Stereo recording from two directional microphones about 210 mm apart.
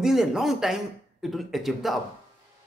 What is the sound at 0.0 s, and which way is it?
Speech, centre (ahead or behind).